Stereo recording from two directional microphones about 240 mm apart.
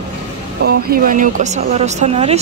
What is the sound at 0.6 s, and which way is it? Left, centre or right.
Speech, right.